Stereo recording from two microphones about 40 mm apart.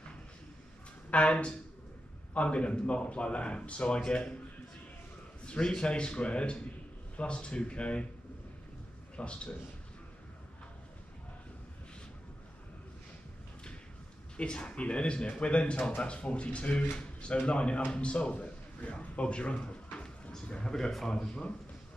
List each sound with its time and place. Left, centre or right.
1.1 s speech: left
5.4 s speech: left
9.1 s a man's voice: left
14.3 s a man's voice: left